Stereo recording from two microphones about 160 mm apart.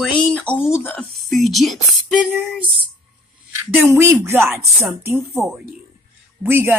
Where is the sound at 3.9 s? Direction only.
15° right (ahead or behind).